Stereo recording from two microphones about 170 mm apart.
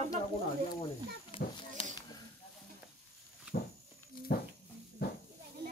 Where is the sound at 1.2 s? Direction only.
35° left (ahead or behind).